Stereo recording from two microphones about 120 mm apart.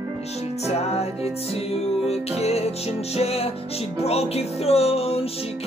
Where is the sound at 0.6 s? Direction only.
60° left (ahead or behind).